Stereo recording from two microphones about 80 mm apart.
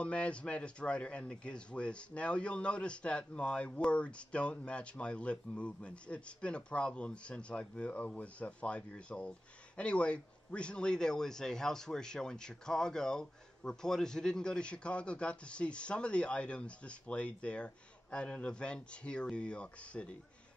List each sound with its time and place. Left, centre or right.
0.0 s a man's voice: centre